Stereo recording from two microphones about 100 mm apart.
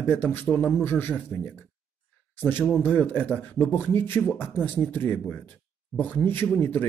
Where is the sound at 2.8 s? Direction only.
15° left (ahead or behind).